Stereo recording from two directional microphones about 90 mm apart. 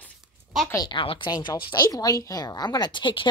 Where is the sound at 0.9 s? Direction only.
70° left (ahead or behind).